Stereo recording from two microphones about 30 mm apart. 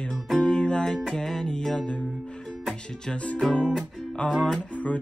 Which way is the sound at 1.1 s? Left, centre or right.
Centre.